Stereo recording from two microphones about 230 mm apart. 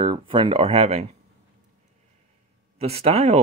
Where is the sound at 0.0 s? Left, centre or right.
Right.